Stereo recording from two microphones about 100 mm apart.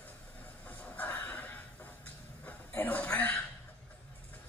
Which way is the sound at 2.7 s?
15° left (ahead or behind).